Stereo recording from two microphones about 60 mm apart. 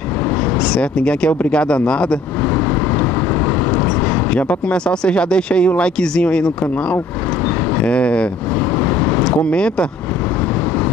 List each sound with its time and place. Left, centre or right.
0.6 s speech: centre
2.5 s vehicle: left
3.7 s speech: left
8.7 s vehicle: left
9.2 s speech: centre